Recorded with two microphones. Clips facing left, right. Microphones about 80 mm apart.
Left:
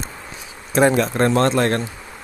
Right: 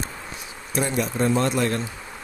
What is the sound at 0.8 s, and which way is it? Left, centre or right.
Speech, left.